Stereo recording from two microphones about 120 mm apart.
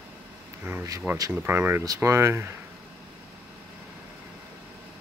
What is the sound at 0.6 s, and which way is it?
Speech, 20° right (ahead or behind).